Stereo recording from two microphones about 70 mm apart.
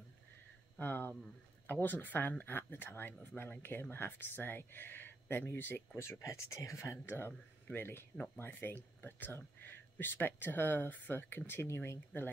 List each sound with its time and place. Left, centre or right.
0.7 s speech: left
7.1 s speech: left